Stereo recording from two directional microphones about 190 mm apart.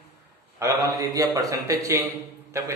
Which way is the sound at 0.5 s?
15° right (ahead or behind).